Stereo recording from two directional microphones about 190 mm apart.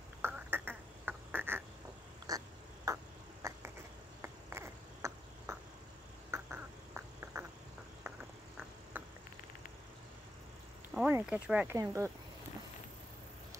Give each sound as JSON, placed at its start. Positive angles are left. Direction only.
{"t": 0.2, "sound": "a sound", "side_deg": -10}
{"t": 6.3, "sound": "duck", "side_deg": -15}
{"t": 11.0, "sound": "speech", "side_deg": -10}